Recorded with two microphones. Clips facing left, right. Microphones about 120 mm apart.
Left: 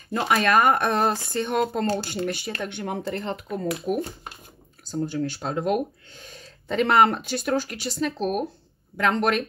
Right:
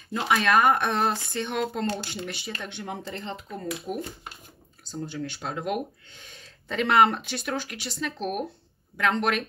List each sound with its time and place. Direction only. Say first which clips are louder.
0.1 s speech: left 2 dB; 50° left (ahead or behind)
3.9 s speech: left 7 dB; 75° left (ahead or behind)
5.0 s speech: left 5 dB; 40° left (ahead or behind)